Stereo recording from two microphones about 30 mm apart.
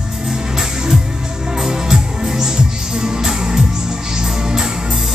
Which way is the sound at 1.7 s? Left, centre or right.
Centre.